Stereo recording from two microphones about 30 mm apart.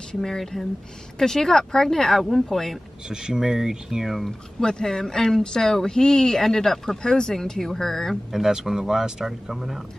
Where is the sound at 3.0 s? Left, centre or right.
Right.